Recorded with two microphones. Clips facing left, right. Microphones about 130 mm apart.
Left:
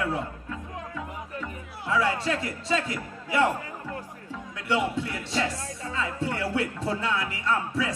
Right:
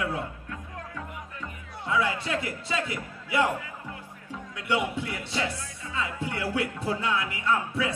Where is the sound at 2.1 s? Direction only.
35° left (ahead or behind).